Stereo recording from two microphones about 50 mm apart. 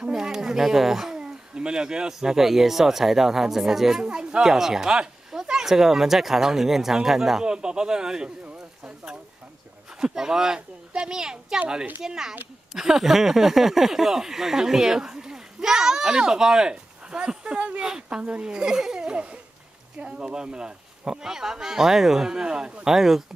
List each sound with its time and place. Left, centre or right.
0.1 s speech: centre
4.0 s speech: centre
4.5 s speech: centre
9.9 s speech: centre